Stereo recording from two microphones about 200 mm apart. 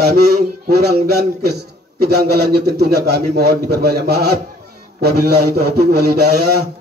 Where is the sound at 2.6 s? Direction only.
55° right (ahead or behind).